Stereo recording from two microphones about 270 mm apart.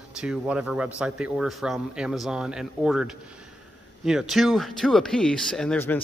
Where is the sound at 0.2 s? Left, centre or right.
Centre.